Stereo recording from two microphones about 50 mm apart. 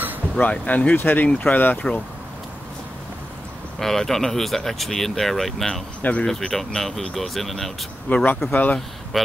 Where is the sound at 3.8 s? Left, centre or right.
Centre.